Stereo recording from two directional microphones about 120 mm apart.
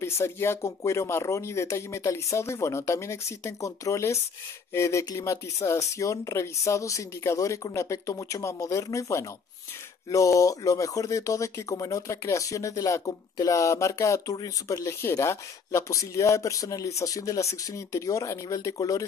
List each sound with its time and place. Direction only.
0.0 s speech: 20° left (ahead or behind)